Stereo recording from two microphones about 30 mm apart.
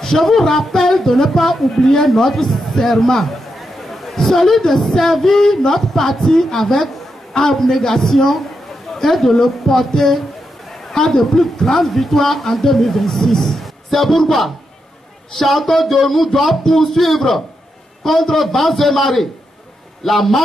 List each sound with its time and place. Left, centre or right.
0.0 s a man's voice: centre